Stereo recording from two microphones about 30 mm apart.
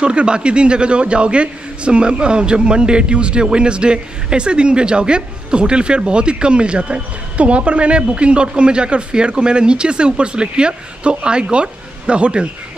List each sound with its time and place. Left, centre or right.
0.0 s a man's voice: right